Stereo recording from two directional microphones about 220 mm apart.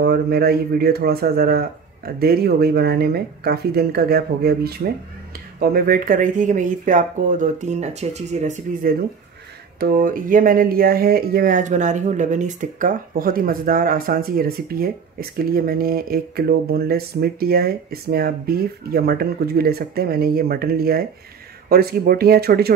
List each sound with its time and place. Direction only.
0.0 s speech: 45° right (ahead or behind)